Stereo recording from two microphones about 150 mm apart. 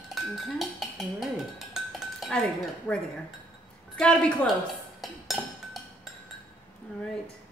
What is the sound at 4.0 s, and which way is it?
Speech, 5° left (ahead or behind).